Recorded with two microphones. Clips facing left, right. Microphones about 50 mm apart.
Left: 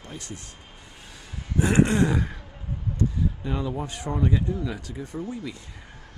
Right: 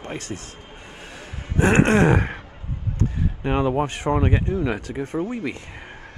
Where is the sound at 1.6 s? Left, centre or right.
Right.